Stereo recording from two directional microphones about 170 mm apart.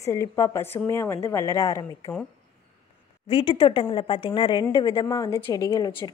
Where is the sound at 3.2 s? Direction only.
30° left (ahead or behind).